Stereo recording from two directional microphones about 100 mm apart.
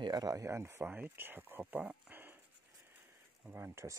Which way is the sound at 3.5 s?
25° right (ahead or behind).